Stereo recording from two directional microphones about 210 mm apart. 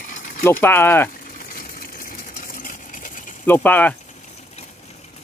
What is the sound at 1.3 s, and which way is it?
Sewing machine, 40° left (ahead or behind).